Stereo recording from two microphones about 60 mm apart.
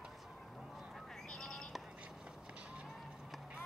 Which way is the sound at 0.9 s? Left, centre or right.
Centre.